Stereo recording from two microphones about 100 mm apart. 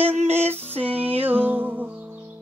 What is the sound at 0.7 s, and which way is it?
Music, 80° right.